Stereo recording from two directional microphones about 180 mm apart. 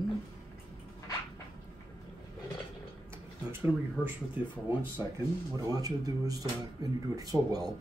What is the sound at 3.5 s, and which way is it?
Speech, 10° right (ahead or behind).